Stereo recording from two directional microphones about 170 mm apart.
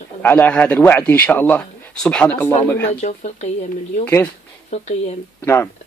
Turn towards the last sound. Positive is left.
turn(degrees=15)  # may be behind; listen again after turning